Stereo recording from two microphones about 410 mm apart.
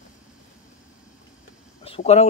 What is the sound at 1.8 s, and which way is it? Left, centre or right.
Speech, centre.